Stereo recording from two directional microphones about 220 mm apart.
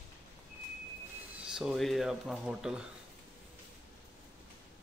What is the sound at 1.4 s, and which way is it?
Speech, 5° right (ahead or behind).